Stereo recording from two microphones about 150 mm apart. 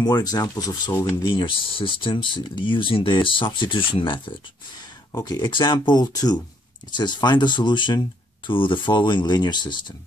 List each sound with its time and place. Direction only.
0.0 s speech: 25° left (ahead or behind)
1.2 s speech: 35° left (ahead or behind)